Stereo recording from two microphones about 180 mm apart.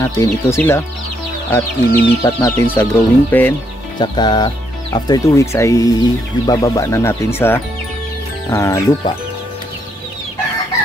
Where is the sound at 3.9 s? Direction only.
25° left (ahead or behind).